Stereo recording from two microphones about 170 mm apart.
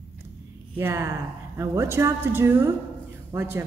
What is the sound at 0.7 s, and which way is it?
A woman's voice, 15° right (ahead or behind).